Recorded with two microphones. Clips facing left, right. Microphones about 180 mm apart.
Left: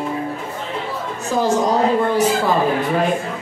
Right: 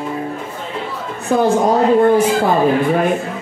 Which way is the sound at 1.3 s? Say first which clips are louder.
Right 4 dB; 60° right (ahead or behind).